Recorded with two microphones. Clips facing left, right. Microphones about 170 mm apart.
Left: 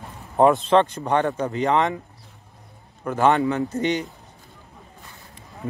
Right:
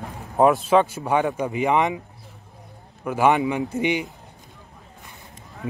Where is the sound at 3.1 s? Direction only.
10° right (ahead or behind).